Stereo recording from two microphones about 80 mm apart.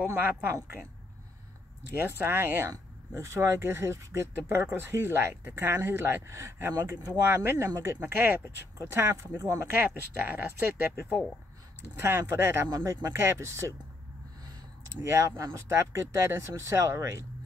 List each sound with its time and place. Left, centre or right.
0.1 s speech: right
1.9 s speech: right
9.7 s speech: right
12.0 s speech: right
12.7 s speech: right
15.0 s speech: right